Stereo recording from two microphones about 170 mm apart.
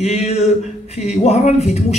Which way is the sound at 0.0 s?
40° left (ahead or behind).